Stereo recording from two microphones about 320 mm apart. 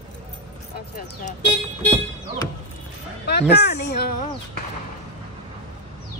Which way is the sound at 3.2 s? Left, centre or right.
Left.